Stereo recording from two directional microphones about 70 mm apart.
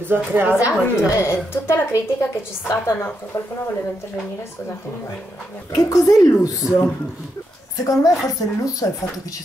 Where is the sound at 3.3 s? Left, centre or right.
Left.